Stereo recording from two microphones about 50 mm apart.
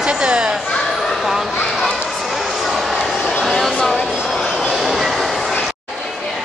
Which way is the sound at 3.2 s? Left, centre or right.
Centre.